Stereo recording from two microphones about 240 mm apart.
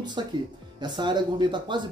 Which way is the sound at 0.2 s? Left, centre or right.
Centre.